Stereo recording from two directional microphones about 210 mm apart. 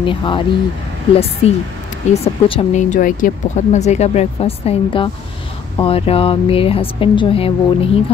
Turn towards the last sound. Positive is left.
turn(degrees=25)  # may be behind; listen again after turning